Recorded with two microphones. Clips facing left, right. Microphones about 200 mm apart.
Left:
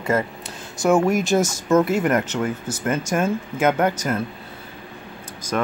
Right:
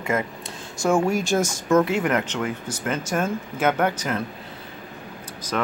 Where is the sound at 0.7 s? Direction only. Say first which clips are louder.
Left 3 dB; 5° left (ahead or behind).